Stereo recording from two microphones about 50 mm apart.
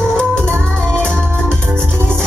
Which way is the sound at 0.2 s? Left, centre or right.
Centre.